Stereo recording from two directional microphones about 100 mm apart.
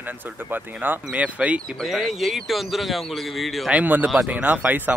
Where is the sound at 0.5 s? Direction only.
15° right (ahead or behind).